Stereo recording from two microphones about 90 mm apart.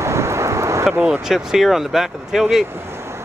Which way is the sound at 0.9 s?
10° right (ahead or behind).